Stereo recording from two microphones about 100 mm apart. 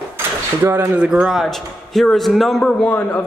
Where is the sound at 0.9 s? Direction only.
10° right (ahead or behind).